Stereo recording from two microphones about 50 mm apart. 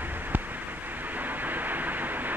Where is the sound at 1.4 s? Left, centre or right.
Right.